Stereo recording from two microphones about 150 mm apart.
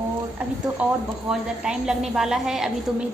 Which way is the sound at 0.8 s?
10° right (ahead or behind).